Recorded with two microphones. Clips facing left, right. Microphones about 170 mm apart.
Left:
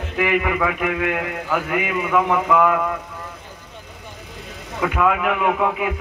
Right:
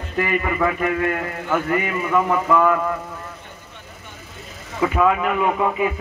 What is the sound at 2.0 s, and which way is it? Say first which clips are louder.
Speech: left 3 dB; 10° left (ahead or behind).